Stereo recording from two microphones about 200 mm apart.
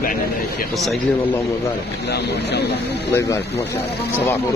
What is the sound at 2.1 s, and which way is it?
Speech, 55° left (ahead or behind).